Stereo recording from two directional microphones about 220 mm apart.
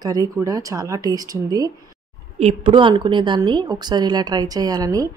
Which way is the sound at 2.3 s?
25° right (ahead or behind).